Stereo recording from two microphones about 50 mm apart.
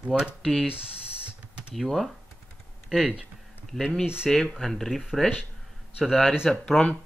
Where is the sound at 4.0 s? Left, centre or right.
Centre.